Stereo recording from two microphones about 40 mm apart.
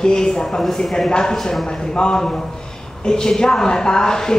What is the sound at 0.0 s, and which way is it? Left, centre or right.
A man's voice, centre.